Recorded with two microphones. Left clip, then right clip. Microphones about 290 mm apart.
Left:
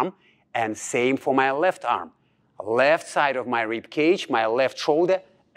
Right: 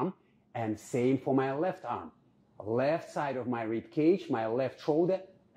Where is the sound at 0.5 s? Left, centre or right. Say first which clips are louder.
Left 10 dB; centre.